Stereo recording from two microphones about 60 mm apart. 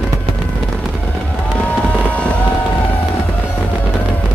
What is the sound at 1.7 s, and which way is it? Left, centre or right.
Fireworks, left.